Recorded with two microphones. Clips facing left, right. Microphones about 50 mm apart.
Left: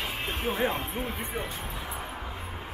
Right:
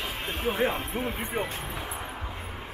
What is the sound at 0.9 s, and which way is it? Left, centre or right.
Speech, centre.